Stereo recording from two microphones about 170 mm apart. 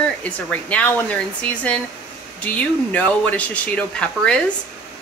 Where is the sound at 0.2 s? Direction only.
10° left (ahead or behind).